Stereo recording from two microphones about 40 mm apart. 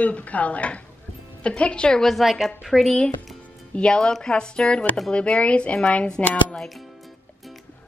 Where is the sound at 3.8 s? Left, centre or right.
Left.